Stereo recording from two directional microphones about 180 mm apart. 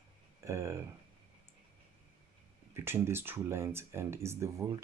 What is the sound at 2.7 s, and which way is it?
Speech, 15° right (ahead or behind).